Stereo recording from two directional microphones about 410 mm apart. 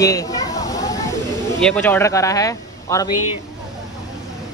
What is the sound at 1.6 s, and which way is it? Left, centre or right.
A man's voice, centre.